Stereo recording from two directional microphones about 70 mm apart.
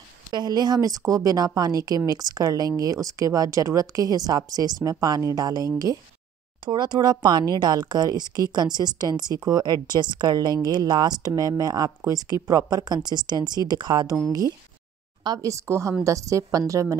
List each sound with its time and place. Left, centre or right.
0.3 s a woman's voice: right
0.7 s speech: right
6.6 s speech: right
8.7 s a woman's voice: right
15.4 s speech: right